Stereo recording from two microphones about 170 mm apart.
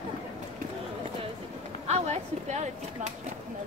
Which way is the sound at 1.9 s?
40° right (ahead or behind).